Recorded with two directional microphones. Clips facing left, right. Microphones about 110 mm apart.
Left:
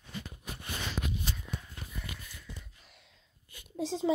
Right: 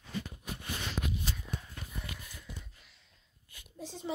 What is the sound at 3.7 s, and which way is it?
Speech, 90° left.